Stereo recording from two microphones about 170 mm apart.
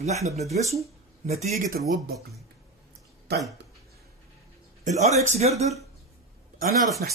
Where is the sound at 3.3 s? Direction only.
75° right (ahead or behind).